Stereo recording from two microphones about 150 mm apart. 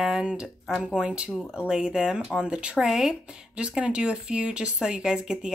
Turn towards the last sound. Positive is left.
turn(degrees=-5)  # may be behind; listen again after turning